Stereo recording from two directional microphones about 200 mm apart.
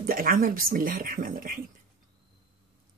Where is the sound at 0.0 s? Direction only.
45° right (ahead or behind).